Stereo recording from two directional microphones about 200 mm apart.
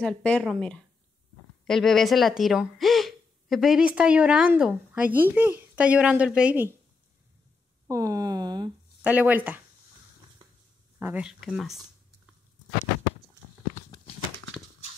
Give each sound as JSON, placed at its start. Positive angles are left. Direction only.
{"t": 0.0, "sound": "a woman's voice", "side_deg": 5}
{"t": 7.9, "sound": "a woman's voice", "side_deg": -15}
{"t": 9.0, "sound": "a woman's voice", "side_deg": -10}
{"t": 11.0, "sound": "speech", "side_deg": -10}
{"t": 13.8, "sound": "a sound", "side_deg": 25}